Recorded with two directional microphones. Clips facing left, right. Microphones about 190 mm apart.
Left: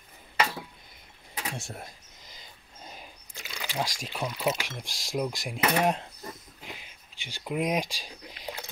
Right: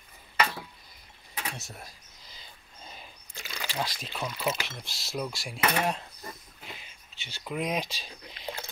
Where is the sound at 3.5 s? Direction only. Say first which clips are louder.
Left 1 dB; 10° left (ahead or behind).